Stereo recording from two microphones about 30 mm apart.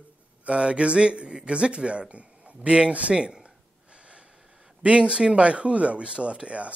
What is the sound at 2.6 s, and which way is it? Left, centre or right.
Speech, right.